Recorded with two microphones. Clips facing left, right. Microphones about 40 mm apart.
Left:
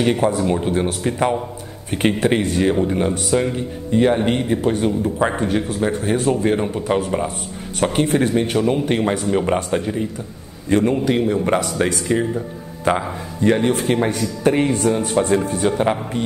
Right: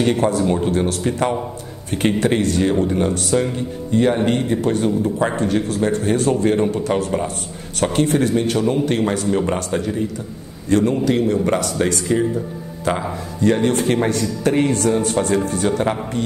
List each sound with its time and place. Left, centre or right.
0.0 s speech: centre
1.9 s speech: centre
4.3 s a man's voice: centre
13.7 s a man's voice: centre